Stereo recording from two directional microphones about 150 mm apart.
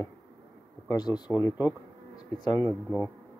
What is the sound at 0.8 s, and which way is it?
Speech, 30° left (ahead or behind).